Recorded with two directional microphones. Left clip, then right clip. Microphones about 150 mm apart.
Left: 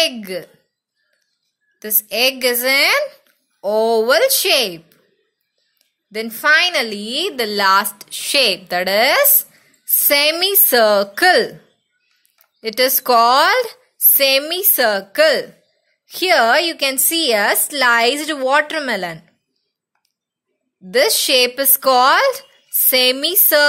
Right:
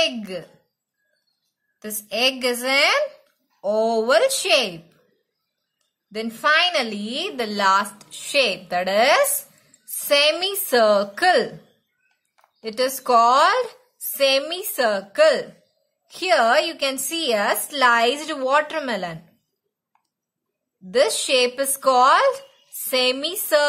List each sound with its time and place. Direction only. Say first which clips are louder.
0.0 s a woman's voice: left 4 dB; 30° left (ahead or behind)
1.8 s a woman's voice: left 5 dB; 20° left (ahead or behind)
6.1 s a woman's voice: left 5 dB; 25° left (ahead or behind)
12.6 s a woman's voice: left 6 dB; 30° left (ahead or behind)
20.9 s a woman's voice: left 4 dB; 25° left (ahead or behind)